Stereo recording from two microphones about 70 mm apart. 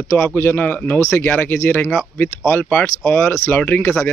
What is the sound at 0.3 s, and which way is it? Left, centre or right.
Speech, left.